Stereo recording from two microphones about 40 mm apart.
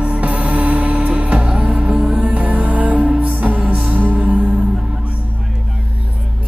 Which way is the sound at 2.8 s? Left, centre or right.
Right.